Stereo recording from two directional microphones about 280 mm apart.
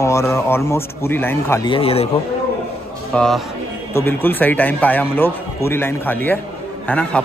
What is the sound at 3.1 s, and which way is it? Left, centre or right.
A man's voice, centre.